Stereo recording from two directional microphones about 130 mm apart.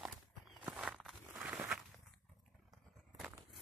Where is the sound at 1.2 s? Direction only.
10° right (ahead or behind).